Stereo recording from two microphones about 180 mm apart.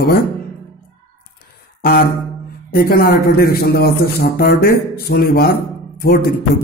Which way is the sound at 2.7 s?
55° left (ahead or behind).